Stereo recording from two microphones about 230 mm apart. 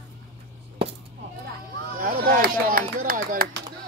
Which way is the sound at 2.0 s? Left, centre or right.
Right.